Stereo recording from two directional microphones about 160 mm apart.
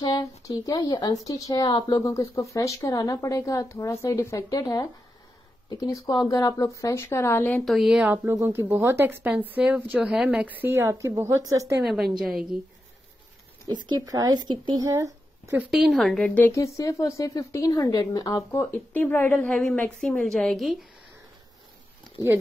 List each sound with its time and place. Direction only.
0.0 s speech: 20° left (ahead or behind)
7.6 s a woman's voice: centre (ahead or behind); by 11.7 s 20° right (ahead or behind)
11.8 s a woman's voice: centre (ahead or behind)
13.7 s speech: 25° right (ahead or behind)
14.9 s a sound: 20° right (ahead or behind)
15.7 s speech: centre (ahead or behind)